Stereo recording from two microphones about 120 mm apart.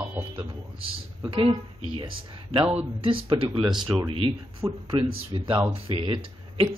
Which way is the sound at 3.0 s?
50° right (ahead or behind).